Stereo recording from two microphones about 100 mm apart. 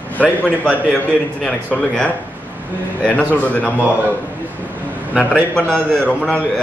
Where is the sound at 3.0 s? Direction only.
10° left (ahead or behind).